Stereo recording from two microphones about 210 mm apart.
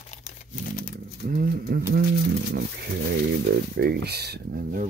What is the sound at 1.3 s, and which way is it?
Speech, 45° right (ahead or behind).